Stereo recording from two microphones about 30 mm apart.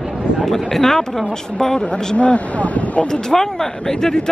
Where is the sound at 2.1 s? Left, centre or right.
Left.